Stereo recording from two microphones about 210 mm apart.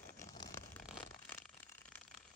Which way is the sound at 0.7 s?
5° left (ahead or behind).